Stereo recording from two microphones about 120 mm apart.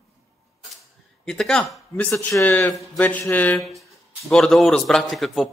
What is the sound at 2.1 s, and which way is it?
Speech, 15° left (ahead or behind).